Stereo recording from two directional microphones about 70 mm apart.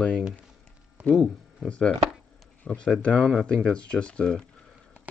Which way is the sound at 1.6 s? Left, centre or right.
Centre.